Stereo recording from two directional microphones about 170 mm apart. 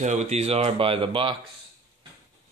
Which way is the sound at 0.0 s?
45° right (ahead or behind).